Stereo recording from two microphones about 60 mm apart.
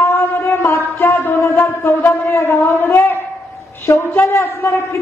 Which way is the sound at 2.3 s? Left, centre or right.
Left.